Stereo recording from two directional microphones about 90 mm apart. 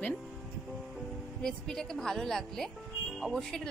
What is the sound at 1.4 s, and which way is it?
A woman's voice, 5° left (ahead or behind).